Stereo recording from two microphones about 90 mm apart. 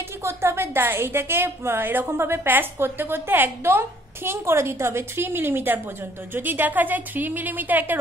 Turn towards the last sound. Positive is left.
turn(degrees=-20)  # may be behind; listen again after turning